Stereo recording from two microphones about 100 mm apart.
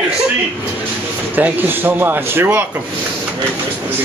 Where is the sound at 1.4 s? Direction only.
20° right (ahead or behind).